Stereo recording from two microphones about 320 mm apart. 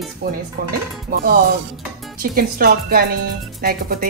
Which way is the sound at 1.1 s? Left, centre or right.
Right.